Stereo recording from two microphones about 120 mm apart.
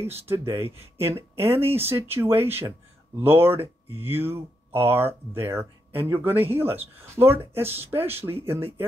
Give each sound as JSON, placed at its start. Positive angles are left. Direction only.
{"t": 0.1, "sound": "speech", "side_deg": -20}